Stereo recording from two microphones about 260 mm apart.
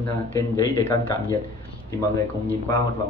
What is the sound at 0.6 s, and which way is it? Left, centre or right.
Speech, centre.